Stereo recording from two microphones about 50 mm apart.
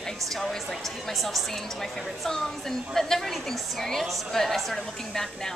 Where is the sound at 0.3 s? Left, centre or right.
Centre.